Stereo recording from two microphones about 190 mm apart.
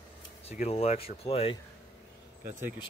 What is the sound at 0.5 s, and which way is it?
Speech, 35° left (ahead or behind).